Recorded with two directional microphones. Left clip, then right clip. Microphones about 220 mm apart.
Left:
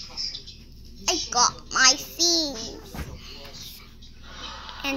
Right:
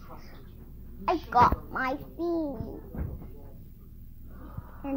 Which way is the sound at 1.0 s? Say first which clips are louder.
Even; 10° left (ahead or behind).